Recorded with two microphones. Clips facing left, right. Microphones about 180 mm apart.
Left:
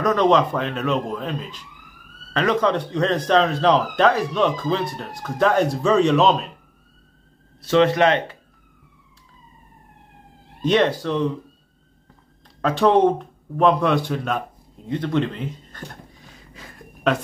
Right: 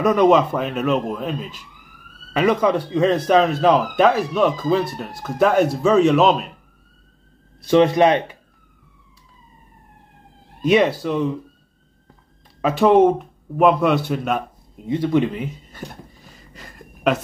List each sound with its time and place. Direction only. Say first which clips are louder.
0.0 s speech: right 3 dB; 10° right (ahead or behind)
7.6 s speech: right 2 dB; 15° right (ahead or behind)
10.6 s speech: right 2 dB; 5° right (ahead or behind)
12.6 s speech: right 3 dB; 5° right (ahead or behind)
14.9 s a sound: right 4 dB; 10° right (ahead or behind)